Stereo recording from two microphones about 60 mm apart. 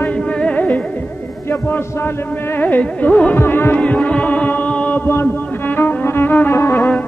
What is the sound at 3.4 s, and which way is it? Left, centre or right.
Music, left.